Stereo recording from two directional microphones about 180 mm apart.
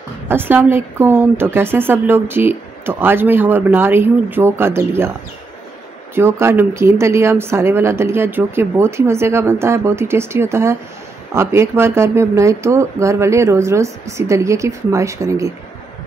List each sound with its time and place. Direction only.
0.3 s a woman's voice: 10° right (ahead or behind)
6.4 s a woman's voice: 15° right (ahead or behind)